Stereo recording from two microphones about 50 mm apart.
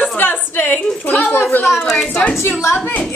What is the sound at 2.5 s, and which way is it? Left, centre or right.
Speech, left.